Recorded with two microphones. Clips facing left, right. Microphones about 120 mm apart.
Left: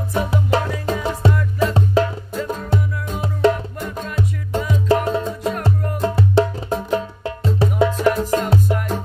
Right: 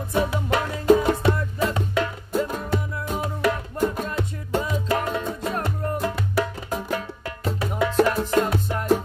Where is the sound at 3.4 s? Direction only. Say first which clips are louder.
Left 7 dB; 25° left (ahead or behind).